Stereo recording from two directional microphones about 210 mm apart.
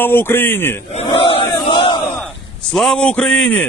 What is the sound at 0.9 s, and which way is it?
Battle cry, 30° left (ahead or behind).